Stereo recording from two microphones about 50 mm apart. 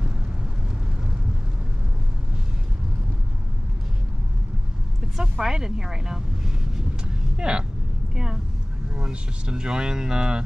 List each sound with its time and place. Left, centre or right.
5.2 s speech: centre